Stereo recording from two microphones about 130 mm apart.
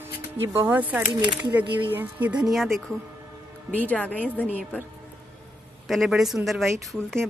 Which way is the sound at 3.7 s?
10° left (ahead or behind).